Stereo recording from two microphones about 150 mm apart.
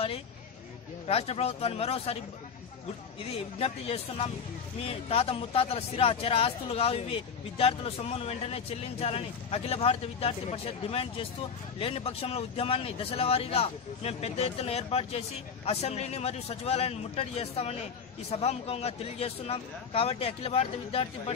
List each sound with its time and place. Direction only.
1.0 s speech: 45° left (ahead or behind)
3.2 s speech: 40° left (ahead or behind)